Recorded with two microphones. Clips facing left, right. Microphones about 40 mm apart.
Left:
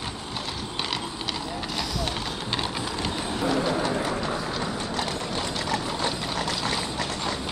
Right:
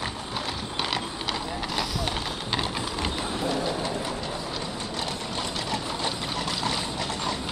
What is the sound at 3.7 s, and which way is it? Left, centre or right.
Bird, left.